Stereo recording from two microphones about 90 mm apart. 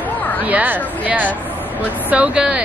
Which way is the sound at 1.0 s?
20° right (ahead or behind).